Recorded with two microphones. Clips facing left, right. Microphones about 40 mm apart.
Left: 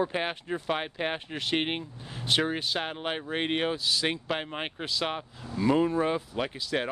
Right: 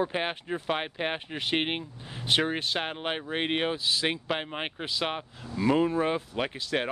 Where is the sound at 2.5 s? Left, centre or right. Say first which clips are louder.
Even; right.